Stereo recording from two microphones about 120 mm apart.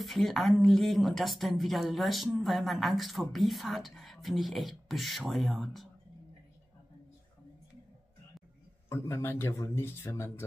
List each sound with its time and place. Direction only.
0.0 s speech: centre (ahead or behind)
8.8 s speech: 20° left (ahead or behind)